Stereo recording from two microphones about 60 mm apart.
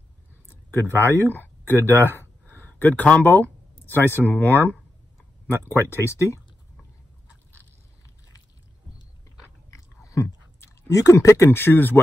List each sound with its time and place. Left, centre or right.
0.5 s speech: left
3.8 s speech: left
9.7 s biting: left
10.2 s chewing: left
10.9 s speech: left
11.5 s speech: left